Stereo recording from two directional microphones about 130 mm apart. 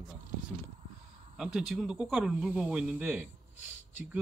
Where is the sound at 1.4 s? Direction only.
5° right (ahead or behind).